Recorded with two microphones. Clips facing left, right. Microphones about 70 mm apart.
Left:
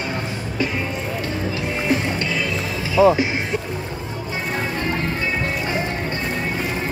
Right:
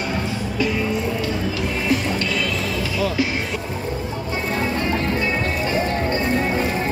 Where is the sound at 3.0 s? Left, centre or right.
Left.